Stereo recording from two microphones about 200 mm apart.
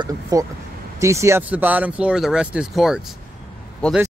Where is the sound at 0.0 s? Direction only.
15° right (ahead or behind).